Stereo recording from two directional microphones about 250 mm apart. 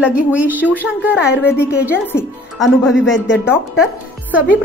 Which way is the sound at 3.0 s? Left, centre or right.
Left.